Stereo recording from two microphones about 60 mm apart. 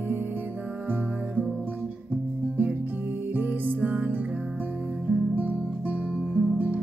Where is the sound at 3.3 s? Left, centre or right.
Right.